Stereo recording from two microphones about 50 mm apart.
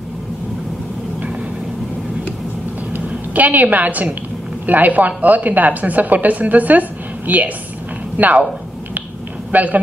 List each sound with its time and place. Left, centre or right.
2.9 s a sound: right
4.6 s a woman's voice: right
9.5 s a man's voice: right